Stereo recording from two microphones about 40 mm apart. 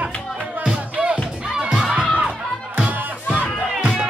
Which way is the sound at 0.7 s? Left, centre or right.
Right.